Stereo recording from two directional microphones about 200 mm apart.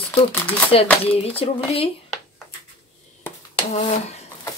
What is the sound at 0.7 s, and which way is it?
Speech, 30° left (ahead or behind).